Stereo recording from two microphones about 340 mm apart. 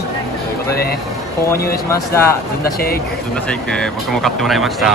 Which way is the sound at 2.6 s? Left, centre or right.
Left.